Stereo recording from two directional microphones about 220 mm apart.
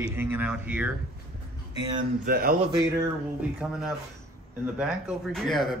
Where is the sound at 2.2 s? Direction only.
40° right (ahead or behind).